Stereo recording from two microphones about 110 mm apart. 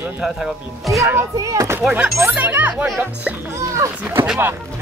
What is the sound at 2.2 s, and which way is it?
Speech, 15° right (ahead or behind).